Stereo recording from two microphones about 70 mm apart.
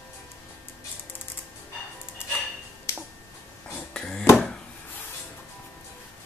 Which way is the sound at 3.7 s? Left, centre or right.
Centre.